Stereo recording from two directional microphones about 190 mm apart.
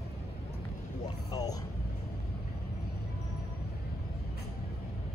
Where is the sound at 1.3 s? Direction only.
20° left (ahead or behind).